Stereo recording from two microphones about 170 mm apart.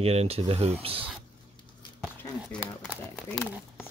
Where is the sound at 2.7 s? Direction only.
5° left (ahead or behind).